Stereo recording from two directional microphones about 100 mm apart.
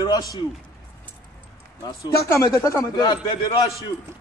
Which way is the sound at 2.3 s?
35° left (ahead or behind).